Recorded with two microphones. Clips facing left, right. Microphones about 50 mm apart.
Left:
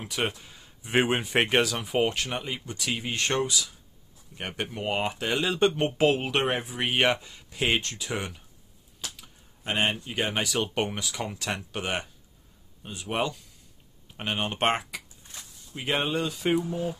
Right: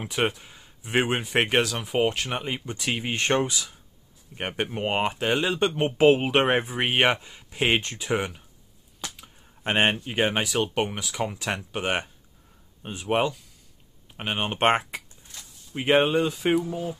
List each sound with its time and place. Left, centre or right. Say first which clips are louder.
0.2 s speech: right 4 dB; centre
2.3 s speech: right 3 dB; right
5.5 s speech: even; centre
6.0 s speech: right 6 dB; right
9.6 s speech: right 4 dB; right
10.0 s speech: right 4 dB; right
10.4 s speech: right 2 dB; centre
11.8 s speech: right 4 dB; right
14.1 s speech: right 2 dB; centre
16.0 s speech: right 6 dB; centre